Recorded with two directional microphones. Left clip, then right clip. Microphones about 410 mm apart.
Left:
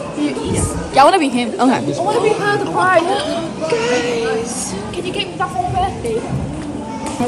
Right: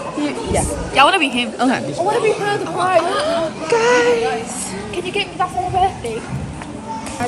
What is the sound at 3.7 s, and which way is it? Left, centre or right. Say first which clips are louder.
Child singing: right 4 dB; centre.